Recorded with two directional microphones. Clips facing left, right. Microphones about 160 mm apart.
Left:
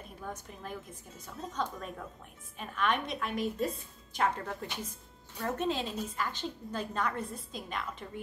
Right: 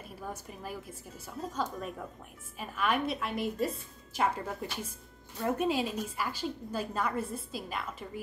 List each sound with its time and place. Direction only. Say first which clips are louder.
0.2 s a woman's voice: right 1 dB; 10° right (ahead or behind)